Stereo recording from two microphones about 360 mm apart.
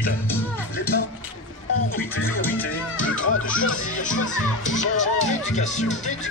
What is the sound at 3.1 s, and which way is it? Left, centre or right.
Music, left.